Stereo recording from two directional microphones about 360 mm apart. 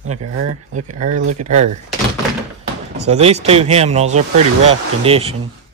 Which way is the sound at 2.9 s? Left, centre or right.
Centre.